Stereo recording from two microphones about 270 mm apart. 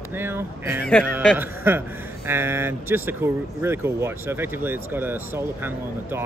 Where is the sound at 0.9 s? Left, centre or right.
Centre.